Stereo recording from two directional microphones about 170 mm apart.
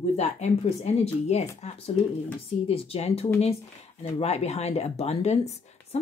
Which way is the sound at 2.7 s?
35° left (ahead or behind).